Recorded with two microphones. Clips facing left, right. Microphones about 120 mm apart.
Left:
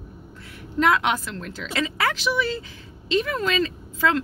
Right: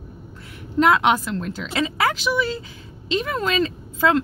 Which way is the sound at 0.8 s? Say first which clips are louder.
Right 3 dB; 20° right (ahead or behind).